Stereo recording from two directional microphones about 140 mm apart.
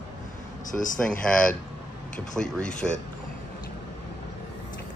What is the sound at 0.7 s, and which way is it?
Speech, 70° left (ahead or behind).